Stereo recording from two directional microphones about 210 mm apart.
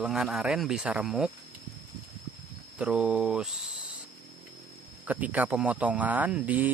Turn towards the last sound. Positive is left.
turn(degrees=-10)  # may be behind; listen again after turning